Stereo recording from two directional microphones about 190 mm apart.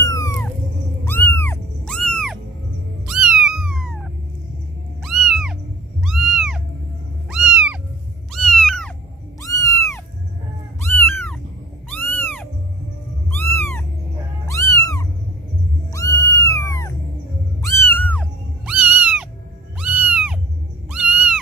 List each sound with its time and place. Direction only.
0.0 s a sound: 15° left (ahead or behind)
1.3 s dog: 10° left (ahead or behind)
3.1 s cat: 5° right (ahead or behind)
9.4 s cat: 15° left (ahead or behind)
12.2 s music: 10° left (ahead or behind)
13.3 s cat: 10° left (ahead or behind)
18.7 s cat: 5° right (ahead or behind)